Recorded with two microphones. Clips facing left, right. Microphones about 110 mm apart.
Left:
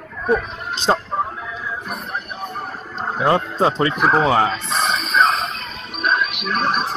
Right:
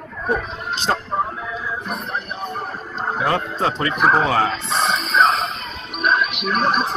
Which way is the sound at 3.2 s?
25° left (ahead or behind).